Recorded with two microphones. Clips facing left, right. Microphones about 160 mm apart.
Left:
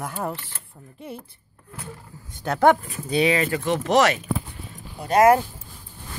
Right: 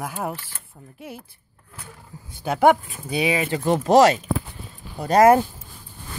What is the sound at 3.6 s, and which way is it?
Speech, 30° right (ahead or behind).